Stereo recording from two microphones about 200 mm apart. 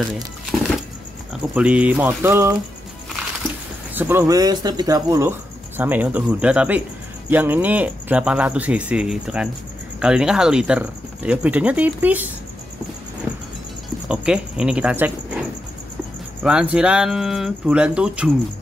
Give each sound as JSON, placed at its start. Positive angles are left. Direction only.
{"t": 1.5, "sound": "speech", "side_deg": -5}
{"t": 3.9, "sound": "speech", "side_deg": -10}
{"t": 14.0, "sound": "speech", "side_deg": -5}
{"t": 16.4, "sound": "speech", "side_deg": -5}